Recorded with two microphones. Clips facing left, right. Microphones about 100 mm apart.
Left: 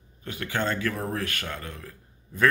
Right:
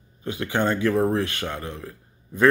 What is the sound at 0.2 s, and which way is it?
Speech, 20° right (ahead or behind).